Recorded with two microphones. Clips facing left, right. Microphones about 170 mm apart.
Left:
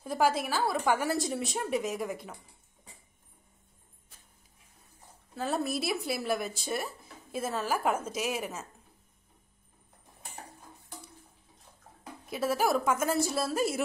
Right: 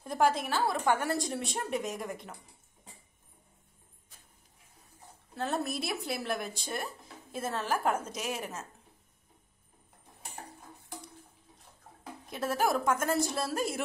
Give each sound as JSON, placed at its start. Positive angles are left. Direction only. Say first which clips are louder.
{"t": 0.0, "sound": "a woman's voice", "louder": "even", "side_deg": 5}
{"t": 5.3, "sound": "a woman's voice", "louder": "left 2 dB", "side_deg": 0}
{"t": 12.3, "sound": "a woman's voice", "louder": "left 2 dB", "side_deg": 5}